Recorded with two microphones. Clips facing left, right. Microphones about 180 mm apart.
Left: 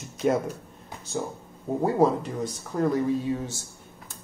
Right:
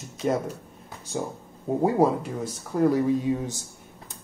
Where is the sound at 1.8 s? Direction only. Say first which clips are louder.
Even; 10° right (ahead or behind).